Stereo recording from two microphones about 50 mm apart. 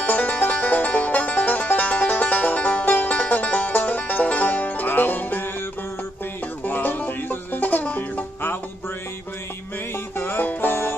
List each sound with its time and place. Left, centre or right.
0.0 s music: left
6.6 s music: left
10.1 s music: left